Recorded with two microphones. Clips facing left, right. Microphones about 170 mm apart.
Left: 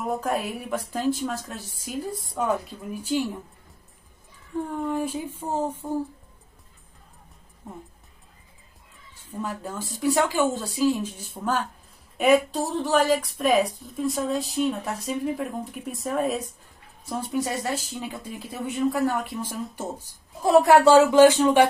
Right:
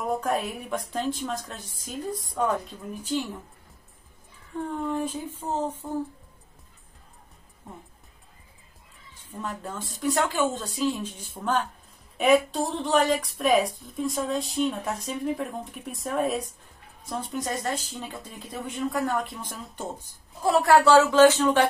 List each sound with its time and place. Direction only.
0.0 s a woman's voice: centre (ahead or behind)
4.8 s a woman's voice: 10° left (ahead or behind)
9.4 s a woman's voice: 5° left (ahead or behind)
20.4 s a woman's voice: 20° left (ahead or behind)